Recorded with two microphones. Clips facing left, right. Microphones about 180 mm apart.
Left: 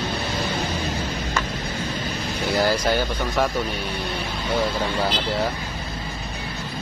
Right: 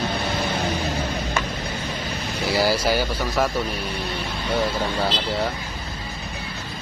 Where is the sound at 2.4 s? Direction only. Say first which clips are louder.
Even; 10° right (ahead or behind).